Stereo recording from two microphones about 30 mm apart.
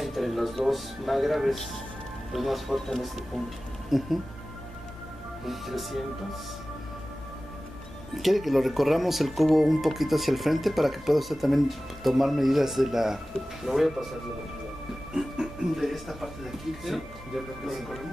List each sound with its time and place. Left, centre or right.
0.0 s music: centre
0.7 s speech: centre
5.5 s speech: centre
8.2 s speech: centre
13.7 s speech: right
15.1 s music: centre
15.7 s speech: centre
17.6 s speech: centre